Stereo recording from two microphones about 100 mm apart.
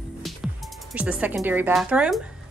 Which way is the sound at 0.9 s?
10° right (ahead or behind).